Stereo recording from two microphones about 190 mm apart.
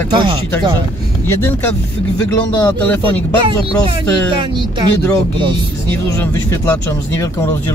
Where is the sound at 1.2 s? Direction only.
10° left (ahead or behind).